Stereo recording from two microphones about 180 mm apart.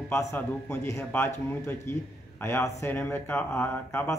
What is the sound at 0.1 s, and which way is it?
Speech, 15° left (ahead or behind).